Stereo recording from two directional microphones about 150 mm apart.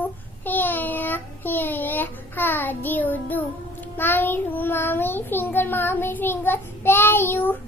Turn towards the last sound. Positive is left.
turn(degrees=15)  # may be behind; listen again after turning